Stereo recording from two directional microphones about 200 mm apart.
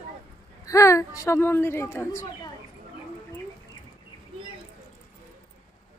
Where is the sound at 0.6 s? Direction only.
15° left (ahead or behind).